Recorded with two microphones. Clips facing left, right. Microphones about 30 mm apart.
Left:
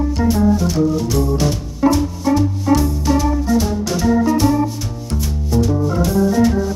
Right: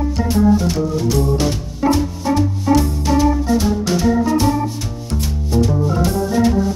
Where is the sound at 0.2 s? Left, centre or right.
Centre.